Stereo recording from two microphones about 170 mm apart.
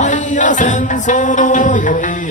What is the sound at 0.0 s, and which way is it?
Music, 45° left (ahead or behind).